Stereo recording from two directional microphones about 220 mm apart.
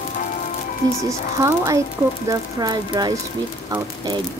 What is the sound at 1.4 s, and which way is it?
Speech, 15° right (ahead or behind).